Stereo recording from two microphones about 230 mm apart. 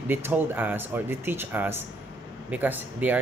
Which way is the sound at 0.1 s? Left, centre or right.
Centre.